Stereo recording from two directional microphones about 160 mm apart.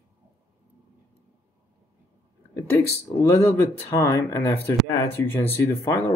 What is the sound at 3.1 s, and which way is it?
Speech, 20° left (ahead or behind).